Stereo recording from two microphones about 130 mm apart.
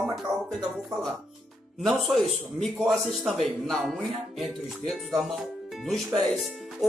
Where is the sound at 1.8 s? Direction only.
Centre (ahead or behind).